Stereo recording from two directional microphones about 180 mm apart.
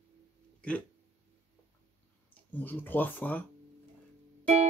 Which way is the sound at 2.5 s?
10° left (ahead or behind).